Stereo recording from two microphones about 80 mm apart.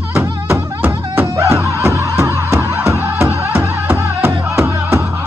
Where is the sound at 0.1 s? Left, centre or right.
Right.